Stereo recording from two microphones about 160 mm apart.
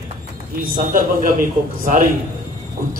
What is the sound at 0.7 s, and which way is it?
Speech, 55° right (ahead or behind).